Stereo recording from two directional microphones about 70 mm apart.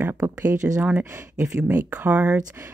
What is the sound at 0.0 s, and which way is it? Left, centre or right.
Speech, right.